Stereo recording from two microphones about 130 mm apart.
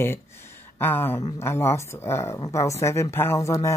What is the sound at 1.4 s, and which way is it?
Speech, 20° left (ahead or behind).